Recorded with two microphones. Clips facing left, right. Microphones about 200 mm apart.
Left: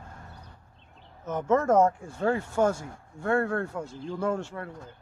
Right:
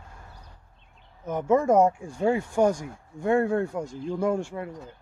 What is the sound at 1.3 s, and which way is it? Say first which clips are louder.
Speech: right 2 dB; 10° right (ahead or behind).